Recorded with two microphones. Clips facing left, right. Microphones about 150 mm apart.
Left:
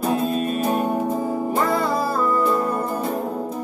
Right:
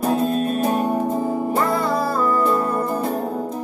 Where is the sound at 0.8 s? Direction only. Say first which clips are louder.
Right 1 dB; 15° right (ahead or behind).